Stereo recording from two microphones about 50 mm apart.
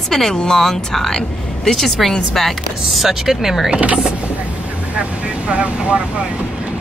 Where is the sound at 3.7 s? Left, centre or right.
Right.